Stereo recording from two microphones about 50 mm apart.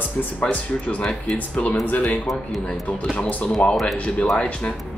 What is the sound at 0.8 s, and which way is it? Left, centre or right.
Speech, left.